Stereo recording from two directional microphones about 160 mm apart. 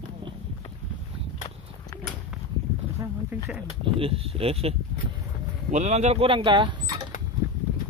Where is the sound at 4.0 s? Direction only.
35° right (ahead or behind).